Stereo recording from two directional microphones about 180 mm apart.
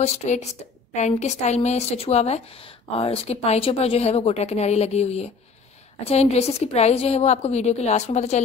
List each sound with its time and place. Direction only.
0.0 s a woman's voice: 40° left (ahead or behind)